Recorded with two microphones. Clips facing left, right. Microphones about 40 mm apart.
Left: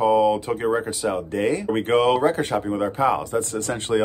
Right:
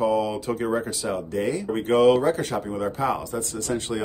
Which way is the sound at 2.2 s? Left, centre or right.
Left.